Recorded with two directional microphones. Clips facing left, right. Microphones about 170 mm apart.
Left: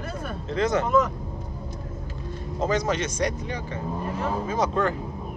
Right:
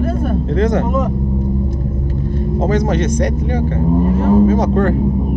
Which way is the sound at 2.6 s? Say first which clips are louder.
Right 7 dB; 55° right (ahead or behind).